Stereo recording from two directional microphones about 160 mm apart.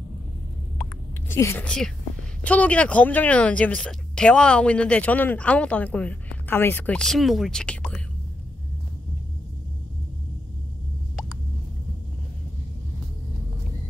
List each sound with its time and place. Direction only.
1.3 s speech: 15° left (ahead or behind)